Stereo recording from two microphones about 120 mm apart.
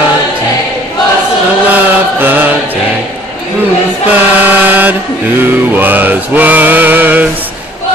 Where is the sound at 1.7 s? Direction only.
15° right (ahead or behind).